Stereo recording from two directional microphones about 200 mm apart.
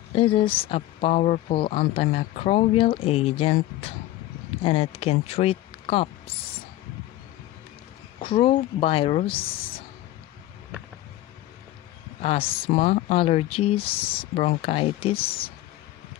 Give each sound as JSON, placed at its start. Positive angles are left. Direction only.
{"t": 0.1, "sound": "speech", "side_deg": 30}
{"t": 8.2, "sound": "speech", "side_deg": 25}
{"t": 12.2, "sound": "speech", "side_deg": 30}